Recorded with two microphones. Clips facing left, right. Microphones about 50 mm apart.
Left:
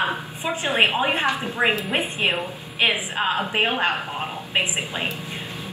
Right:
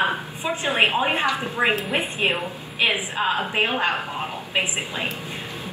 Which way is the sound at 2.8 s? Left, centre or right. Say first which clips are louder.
Even; left.